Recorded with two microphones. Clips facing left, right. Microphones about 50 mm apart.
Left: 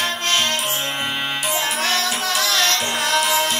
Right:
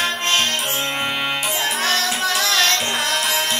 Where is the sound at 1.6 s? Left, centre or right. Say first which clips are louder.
Right 1 dB; right.